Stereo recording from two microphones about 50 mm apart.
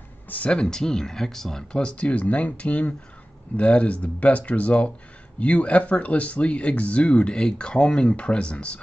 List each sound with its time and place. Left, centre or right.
0.5 s speech: centre